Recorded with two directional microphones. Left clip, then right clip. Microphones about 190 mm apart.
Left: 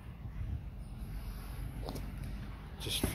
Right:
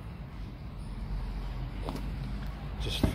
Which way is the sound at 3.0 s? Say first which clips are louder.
Right 6 dB; 60° right (ahead or behind).